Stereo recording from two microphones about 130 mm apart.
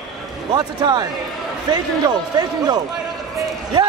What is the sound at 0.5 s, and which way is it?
A man's voice, 30° right (ahead or behind).